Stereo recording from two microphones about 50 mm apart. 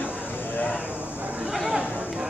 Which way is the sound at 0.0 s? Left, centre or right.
Left.